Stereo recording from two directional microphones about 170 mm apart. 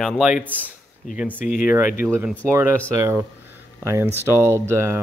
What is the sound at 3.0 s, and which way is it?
Speech, 15° right (ahead or behind).